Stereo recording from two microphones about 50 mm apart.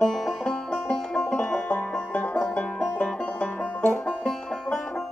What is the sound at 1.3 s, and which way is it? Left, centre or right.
Music, left.